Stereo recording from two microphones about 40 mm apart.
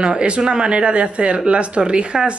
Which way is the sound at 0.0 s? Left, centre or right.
Right.